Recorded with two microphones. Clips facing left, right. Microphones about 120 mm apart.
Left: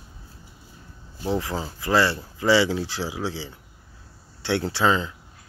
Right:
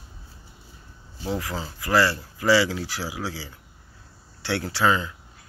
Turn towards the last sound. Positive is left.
turn(degrees=25)  # may be behind; listen again after turning